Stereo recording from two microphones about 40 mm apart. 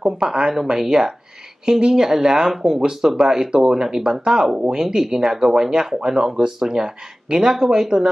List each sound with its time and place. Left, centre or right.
0.0 s speech: centre